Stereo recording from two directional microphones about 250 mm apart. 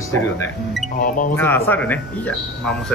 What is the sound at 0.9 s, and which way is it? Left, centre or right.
Speech, left.